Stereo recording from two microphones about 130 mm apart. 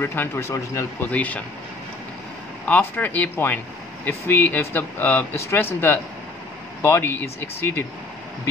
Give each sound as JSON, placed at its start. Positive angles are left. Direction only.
{"t": 0.0, "sound": "speech", "side_deg": 15}
{"t": 2.6, "sound": "speech", "side_deg": 10}